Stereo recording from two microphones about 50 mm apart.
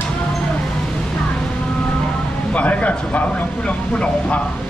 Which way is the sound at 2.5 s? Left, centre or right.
Left.